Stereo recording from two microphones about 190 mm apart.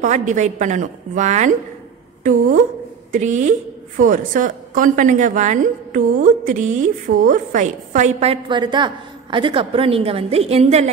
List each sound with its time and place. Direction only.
0.0 s a woman's voice: 40° right (ahead or behind)
3.1 s a woman's voice: 40° right (ahead or behind)